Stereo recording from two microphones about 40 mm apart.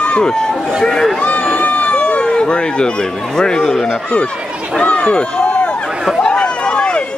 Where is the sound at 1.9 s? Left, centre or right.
Left.